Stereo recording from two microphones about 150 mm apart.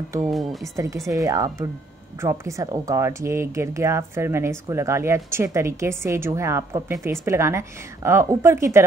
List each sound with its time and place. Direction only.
0.3 s speech: centre (ahead or behind)
1.0 s speech: 20° right (ahead or behind)